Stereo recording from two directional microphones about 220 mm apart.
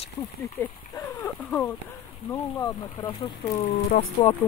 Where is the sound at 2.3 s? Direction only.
15° left (ahead or behind).